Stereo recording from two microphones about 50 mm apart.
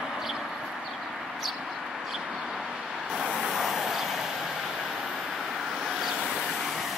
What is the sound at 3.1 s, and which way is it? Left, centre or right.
Vehicle, centre.